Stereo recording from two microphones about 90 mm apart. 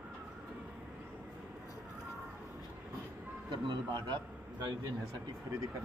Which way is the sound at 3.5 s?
55° right (ahead or behind).